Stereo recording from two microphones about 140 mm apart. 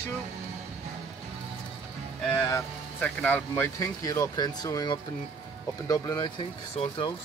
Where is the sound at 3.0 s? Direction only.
10° left (ahead or behind); by 7.1 s 40° left (ahead or behind).